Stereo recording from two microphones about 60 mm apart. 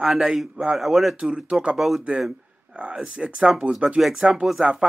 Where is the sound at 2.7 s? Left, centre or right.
Centre.